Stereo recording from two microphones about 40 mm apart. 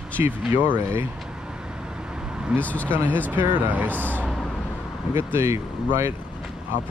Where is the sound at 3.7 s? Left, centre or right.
Right.